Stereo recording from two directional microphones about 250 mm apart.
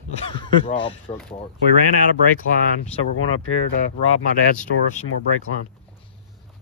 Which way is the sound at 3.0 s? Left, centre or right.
Left.